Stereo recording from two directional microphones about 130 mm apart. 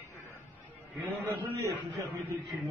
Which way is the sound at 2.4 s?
Centre (ahead or behind).